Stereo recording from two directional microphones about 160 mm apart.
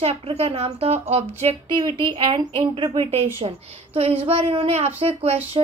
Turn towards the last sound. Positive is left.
turn(degrees=-35)  # may be behind; listen again after turning